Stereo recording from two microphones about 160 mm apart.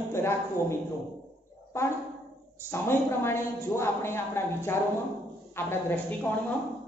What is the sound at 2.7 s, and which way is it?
A woman's voice, 15° left (ahead or behind).